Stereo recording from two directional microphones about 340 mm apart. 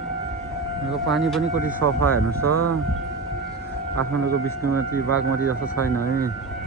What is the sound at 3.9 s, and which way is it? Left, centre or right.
Speech, right.